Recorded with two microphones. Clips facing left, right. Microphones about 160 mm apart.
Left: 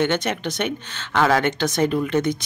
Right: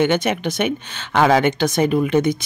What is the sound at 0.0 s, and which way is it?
Speech, 10° right (ahead or behind).